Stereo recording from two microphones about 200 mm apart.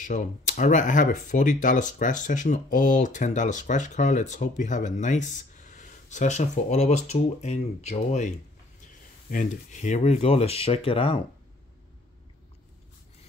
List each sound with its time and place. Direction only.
0.0 s speech: 40° left (ahead or behind)